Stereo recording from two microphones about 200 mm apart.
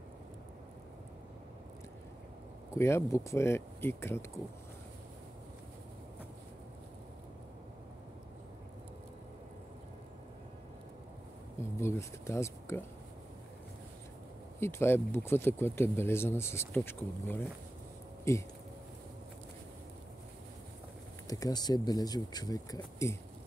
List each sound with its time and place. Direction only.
2.7 s speech: 15° left (ahead or behind)
11.6 s speech: 10° left (ahead or behind)
14.6 s speech: 10° left (ahead or behind)
21.3 s speech: 20° left (ahead or behind)